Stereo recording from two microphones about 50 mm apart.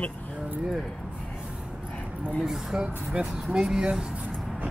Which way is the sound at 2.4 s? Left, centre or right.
Centre.